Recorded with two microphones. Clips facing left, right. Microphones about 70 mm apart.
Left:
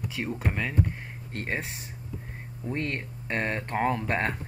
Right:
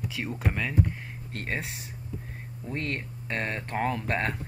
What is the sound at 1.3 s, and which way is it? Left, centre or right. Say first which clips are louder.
Speech: left 1 dB; centre.